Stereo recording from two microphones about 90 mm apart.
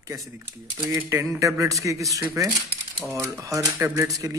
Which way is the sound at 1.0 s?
30° right (ahead or behind).